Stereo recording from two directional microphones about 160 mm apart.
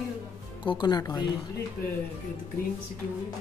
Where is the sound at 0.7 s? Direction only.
30° left (ahead or behind).